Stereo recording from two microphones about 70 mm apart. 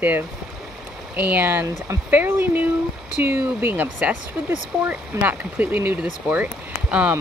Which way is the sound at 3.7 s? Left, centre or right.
Right.